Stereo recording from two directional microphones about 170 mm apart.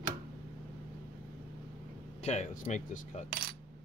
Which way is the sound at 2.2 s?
45° left (ahead or behind).